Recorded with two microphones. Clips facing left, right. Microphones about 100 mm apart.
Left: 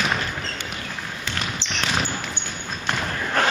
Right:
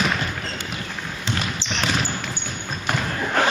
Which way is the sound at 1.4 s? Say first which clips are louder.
Even; centre (ahead or behind).